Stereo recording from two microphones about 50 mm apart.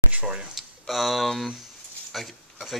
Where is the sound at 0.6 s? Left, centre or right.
Centre.